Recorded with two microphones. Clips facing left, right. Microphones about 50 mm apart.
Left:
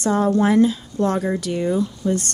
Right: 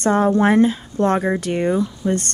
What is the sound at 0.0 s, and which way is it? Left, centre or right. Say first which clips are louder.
Speech: right 2 dB; right.